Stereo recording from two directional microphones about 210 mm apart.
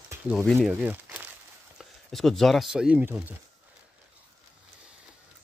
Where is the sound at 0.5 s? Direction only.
5° right (ahead or behind).